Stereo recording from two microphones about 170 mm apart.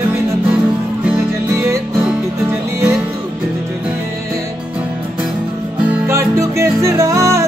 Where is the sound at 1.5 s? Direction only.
15° right (ahead or behind).